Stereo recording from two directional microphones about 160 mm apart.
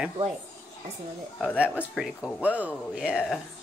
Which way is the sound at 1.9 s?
5° right (ahead or behind).